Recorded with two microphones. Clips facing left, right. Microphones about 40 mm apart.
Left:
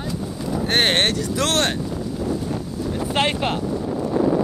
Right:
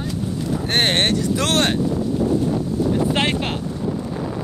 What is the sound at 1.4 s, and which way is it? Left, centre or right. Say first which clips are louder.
Speech: even; right.